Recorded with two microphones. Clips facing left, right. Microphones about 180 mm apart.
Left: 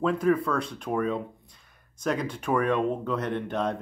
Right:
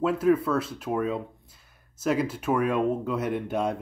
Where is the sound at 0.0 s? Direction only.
5° right (ahead or behind).